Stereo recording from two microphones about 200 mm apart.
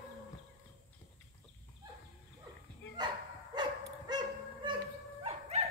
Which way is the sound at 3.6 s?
20° right (ahead or behind).